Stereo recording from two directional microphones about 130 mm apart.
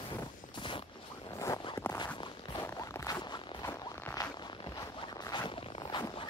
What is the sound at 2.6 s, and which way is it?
Zipper, 20° left (ahead or behind).